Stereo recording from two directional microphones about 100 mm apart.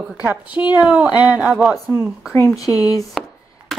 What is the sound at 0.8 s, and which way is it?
Speech, 15° right (ahead or behind).